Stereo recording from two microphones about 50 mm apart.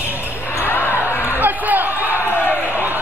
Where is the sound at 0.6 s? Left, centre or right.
Left.